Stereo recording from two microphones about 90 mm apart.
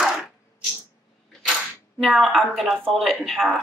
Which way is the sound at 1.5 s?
Centre (ahead or behind).